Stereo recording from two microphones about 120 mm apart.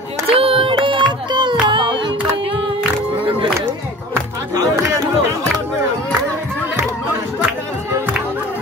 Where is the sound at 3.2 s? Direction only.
45° right (ahead or behind).